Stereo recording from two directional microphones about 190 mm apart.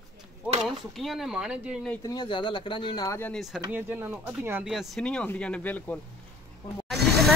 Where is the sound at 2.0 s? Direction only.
20° left (ahead or behind).